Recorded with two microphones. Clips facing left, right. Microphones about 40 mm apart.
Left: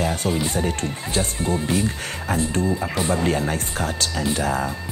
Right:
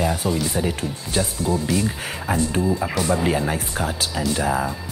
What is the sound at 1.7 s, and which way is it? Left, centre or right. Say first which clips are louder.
Speech: left 1 dB; left.